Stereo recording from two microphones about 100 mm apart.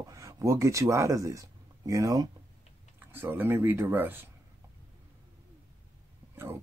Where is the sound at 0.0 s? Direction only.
35° right (ahead or behind).